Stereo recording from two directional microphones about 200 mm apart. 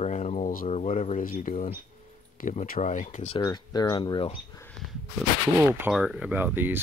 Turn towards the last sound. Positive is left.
turn(degrees=-10)  # may be behind; listen again after turning